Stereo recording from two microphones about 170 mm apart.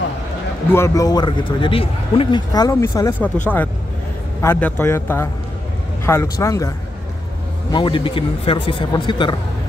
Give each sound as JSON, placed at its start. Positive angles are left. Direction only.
{"t": 0.7, "sound": "a man's voice", "side_deg": 15}
{"t": 4.4, "sound": "a man's voice", "side_deg": 10}
{"t": 7.7, "sound": "a man's voice", "side_deg": 30}